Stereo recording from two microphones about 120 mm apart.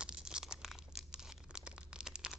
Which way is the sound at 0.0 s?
5° right (ahead or behind).